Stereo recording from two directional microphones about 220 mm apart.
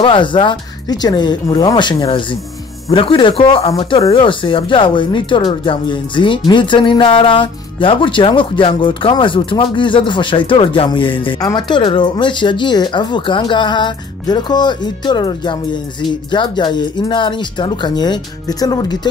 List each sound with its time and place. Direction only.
0.0 s speech: 20° left (ahead or behind)